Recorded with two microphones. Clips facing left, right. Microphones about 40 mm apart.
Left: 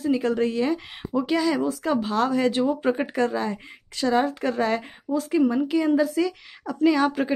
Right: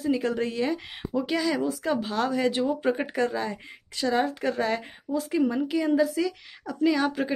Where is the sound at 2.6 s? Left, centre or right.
Centre.